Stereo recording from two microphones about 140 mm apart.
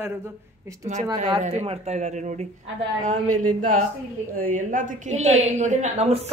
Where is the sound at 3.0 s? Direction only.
70° right (ahead or behind).